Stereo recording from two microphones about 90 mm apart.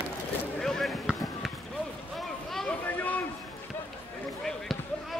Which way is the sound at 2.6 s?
20° left (ahead or behind).